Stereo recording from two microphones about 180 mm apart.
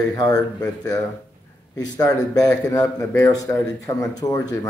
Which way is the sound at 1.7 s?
20° left (ahead or behind).